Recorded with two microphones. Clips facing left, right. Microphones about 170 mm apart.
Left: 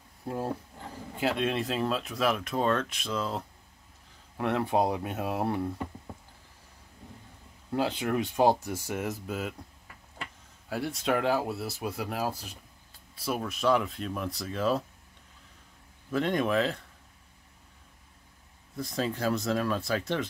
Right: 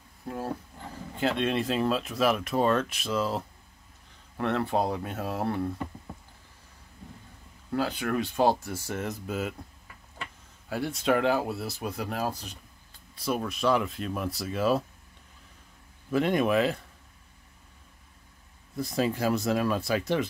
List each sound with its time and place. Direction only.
1.1 s speech: 5° left (ahead or behind)
4.4 s speech: 10° left (ahead or behind)
7.7 s speech: 20° left (ahead or behind); by 9.6 s centre (ahead or behind)
10.7 s speech: centre (ahead or behind)
16.1 s speech: 10° right (ahead or behind)
18.8 s speech: 10° right (ahead or behind)